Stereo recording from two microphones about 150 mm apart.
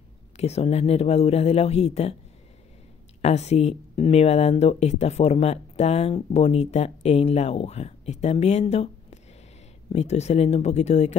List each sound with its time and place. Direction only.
0.4 s speech: 45° left (ahead or behind)
3.2 s speech: 45° left (ahead or behind)